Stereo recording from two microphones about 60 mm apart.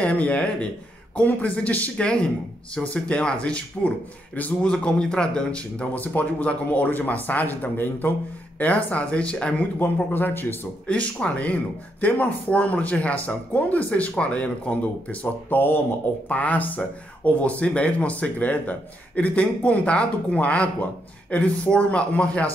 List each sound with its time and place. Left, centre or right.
0.0 s a man's voice: left
10.1 s speech: left
10.9 s speech: left